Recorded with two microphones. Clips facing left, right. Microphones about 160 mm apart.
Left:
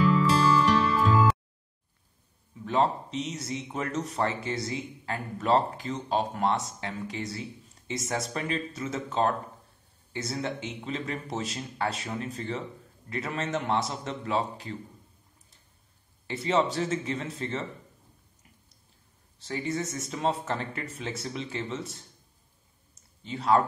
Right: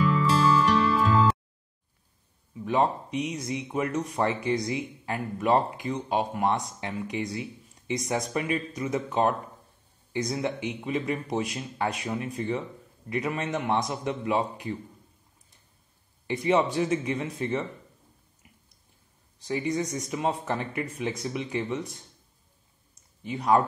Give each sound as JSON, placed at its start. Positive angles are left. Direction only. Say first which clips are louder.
{"t": 0.0, "sound": "music", "louder": "even", "side_deg": 0}
{"t": 2.6, "sound": "speech", "louder": "right 1 dB", "side_deg": -15}
{"t": 16.3, "sound": "speech", "louder": "right 2 dB", "side_deg": -15}
{"t": 19.4, "sound": "speech", "louder": "right 3 dB", "side_deg": -15}
{"t": 22.9, "sound": "clicking", "louder": "right 3 dB", "side_deg": -15}